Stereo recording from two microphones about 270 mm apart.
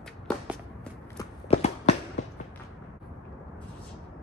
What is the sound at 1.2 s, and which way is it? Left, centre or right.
Walk, left.